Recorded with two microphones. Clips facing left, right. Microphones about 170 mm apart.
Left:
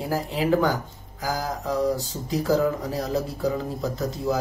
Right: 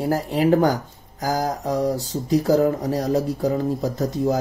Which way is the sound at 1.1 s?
40° right (ahead or behind).